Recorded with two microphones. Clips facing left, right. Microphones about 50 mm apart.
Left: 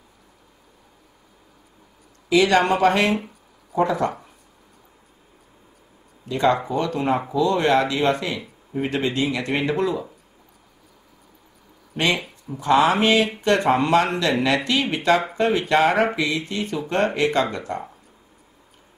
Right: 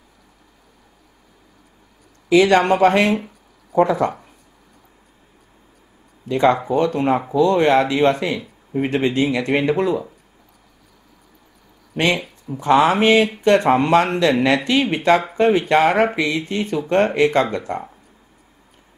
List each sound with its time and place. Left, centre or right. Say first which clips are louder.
2.2 s speech: right 4 dB; right
6.2 s speech: right 4 dB; right
12.5 s speech: right 3 dB; right